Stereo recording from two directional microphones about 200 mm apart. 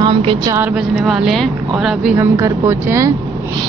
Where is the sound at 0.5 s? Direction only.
5° right (ahead or behind).